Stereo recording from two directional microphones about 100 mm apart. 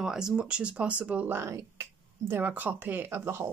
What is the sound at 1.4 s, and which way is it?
Speech, 25° right (ahead or behind).